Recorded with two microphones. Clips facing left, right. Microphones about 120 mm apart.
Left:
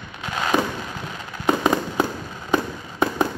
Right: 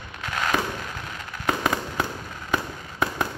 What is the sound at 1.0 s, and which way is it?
Fireworks, 20° left (ahead or behind).